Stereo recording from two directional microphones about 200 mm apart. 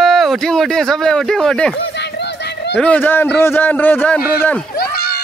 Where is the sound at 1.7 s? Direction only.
60° left (ahead or behind).